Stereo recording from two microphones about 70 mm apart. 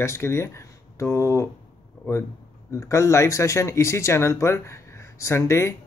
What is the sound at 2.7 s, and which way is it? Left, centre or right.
Speech, left.